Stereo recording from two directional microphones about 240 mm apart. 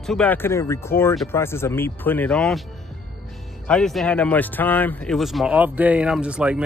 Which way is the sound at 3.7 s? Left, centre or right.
Centre.